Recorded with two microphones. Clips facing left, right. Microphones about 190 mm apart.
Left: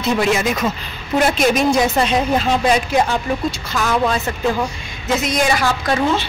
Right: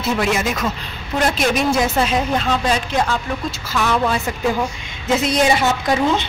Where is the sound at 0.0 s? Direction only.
Centre (ahead or behind).